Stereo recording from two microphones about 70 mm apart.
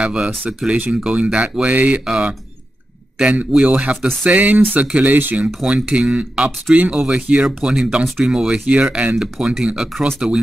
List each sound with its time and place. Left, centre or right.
0.0 s speech: centre
5.7 s speech: centre
7.4 s speech: centre
8.6 s speech: centre